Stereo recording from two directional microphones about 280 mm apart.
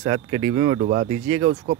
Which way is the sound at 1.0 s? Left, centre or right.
Right.